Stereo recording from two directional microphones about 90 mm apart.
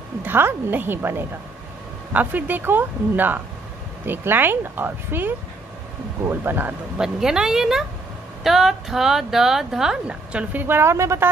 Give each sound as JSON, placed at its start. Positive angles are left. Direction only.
{"t": 0.2, "sound": "speech", "side_deg": -25}
{"t": 7.0, "sound": "speech", "side_deg": -5}